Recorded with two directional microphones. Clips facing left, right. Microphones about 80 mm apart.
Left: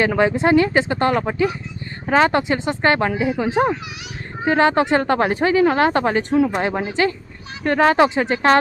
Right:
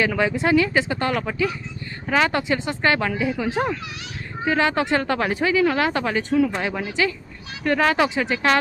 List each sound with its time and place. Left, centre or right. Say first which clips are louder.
0.0 s speech: left 4 dB; left